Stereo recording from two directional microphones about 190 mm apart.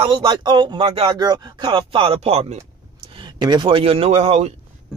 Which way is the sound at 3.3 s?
20° right (ahead or behind).